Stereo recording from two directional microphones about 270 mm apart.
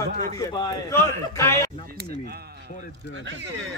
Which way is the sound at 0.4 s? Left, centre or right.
Centre.